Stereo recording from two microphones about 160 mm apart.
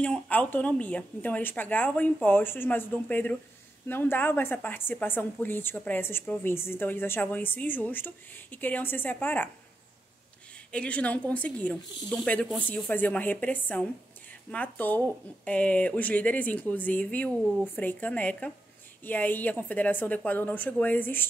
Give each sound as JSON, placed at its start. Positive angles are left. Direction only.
{"t": 0.0, "sound": "a woman's voice", "side_deg": 10}
{"t": 10.7, "sound": "a woman's voice", "side_deg": 5}